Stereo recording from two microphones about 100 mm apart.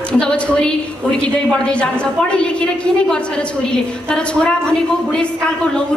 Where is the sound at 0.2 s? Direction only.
10° left (ahead or behind).